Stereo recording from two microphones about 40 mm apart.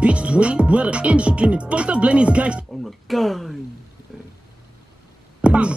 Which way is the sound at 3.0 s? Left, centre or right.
Centre.